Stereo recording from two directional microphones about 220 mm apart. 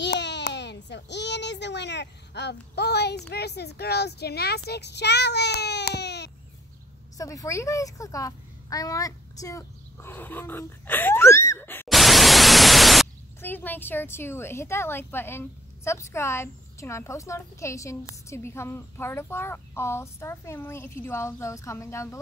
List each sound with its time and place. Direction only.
0.0 s a child's voice: 50° left (ahead or behind)
7.2 s a child's voice: 15° left (ahead or behind)